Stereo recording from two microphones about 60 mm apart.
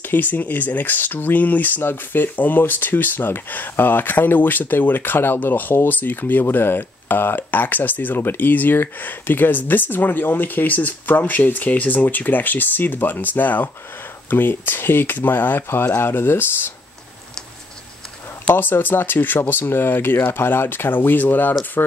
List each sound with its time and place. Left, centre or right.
0.1 s speech: left
18.5 s speech: left